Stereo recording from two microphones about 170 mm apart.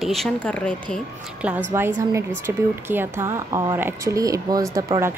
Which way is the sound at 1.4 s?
5° right (ahead or behind).